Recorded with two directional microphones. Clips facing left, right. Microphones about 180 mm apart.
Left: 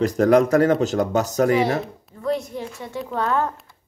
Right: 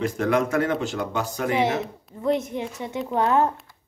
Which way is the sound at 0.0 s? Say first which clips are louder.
Left 6 dB; 40° left (ahead or behind).